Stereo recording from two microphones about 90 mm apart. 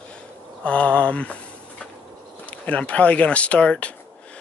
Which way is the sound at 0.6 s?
15° left (ahead or behind).